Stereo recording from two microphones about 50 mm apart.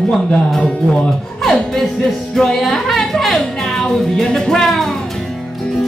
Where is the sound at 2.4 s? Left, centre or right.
Centre.